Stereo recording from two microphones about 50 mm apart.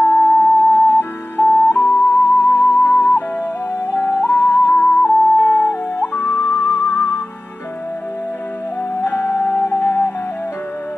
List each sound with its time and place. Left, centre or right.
0.0 s music: left
4.7 s music: left
8.9 s music: left